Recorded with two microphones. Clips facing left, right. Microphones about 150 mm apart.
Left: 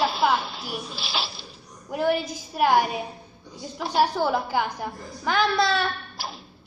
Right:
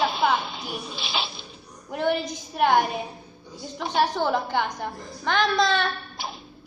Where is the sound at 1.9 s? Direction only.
5° left (ahead or behind).